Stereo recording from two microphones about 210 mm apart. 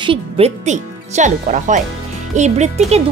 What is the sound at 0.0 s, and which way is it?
Speech, 25° right (ahead or behind).